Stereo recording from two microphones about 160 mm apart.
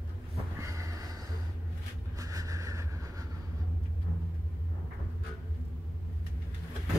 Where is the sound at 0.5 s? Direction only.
20° right (ahead or behind).